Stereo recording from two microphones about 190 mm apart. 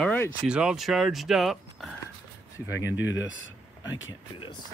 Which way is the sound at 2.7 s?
75° left (ahead or behind).